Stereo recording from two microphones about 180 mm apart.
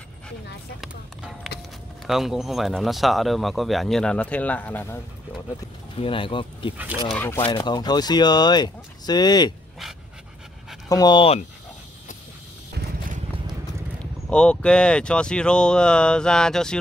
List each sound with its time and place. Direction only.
0.7 s speech: centre (ahead or behind)
5.9 s speech: 30° left (ahead or behind)
7.1 s speech: 10° left (ahead or behind)
7.4 s speech: 25° left (ahead or behind)
10.9 s speech: 20° left (ahead or behind)
14.3 s speech: 5° left (ahead or behind)